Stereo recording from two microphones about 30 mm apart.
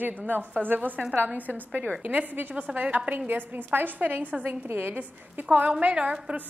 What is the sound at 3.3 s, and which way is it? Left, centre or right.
A woman's voice, right.